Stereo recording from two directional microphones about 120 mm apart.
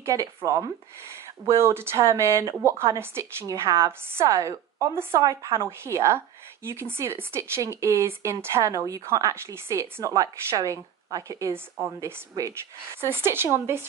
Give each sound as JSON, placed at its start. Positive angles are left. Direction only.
{"t": 0.0, "sound": "speech", "side_deg": -25}